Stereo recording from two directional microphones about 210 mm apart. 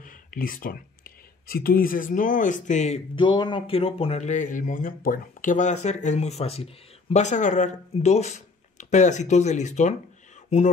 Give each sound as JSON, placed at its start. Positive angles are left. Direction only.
{"t": 0.0, "sound": "speech", "side_deg": 40}